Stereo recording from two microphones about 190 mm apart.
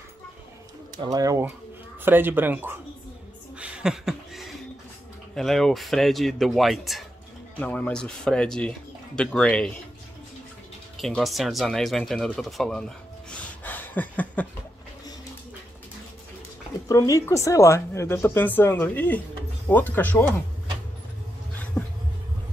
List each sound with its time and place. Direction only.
1.0 s speech: 20° right (ahead or behind)
3.5 s a sound: 5° right (ahead or behind)
5.3 s speech: centre (ahead or behind)
11.0 s speech: centre (ahead or behind)
16.8 s speech: 15° left (ahead or behind)
21.8 s a sound: 10° left (ahead or behind)